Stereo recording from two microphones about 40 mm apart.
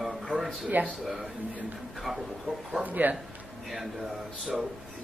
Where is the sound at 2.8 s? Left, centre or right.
Right.